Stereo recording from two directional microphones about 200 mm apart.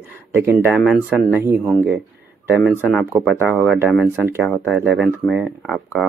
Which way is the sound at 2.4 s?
5° right (ahead or behind).